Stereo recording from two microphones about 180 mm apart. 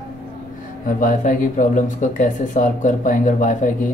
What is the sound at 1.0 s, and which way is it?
Speech, 50° left (ahead or behind).